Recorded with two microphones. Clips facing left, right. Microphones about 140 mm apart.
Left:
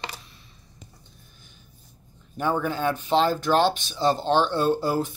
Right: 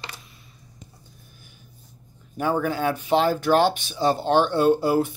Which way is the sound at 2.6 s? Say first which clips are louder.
Right 2 dB; 10° right (ahead or behind).